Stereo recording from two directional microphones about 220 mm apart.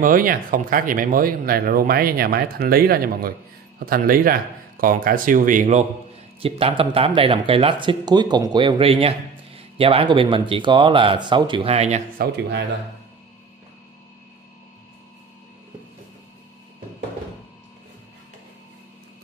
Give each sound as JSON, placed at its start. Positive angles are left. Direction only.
{"t": 0.0, "sound": "speech", "side_deg": -40}
{"t": 12.2, "sound": "speech", "side_deg": -50}